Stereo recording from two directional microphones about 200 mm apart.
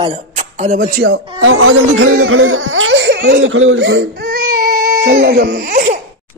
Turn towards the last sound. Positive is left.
turn(degrees=-40)  # may be behind; listen again after turning